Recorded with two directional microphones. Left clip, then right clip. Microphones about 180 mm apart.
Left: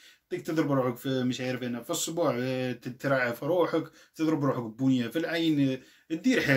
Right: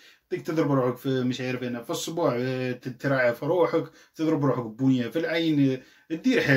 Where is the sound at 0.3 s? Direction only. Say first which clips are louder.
Right 3 dB; 15° left (ahead or behind).